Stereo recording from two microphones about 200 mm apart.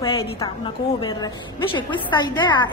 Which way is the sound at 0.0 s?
20° left (ahead or behind).